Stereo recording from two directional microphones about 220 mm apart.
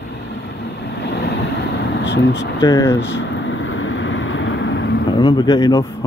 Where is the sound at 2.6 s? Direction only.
15° left (ahead or behind).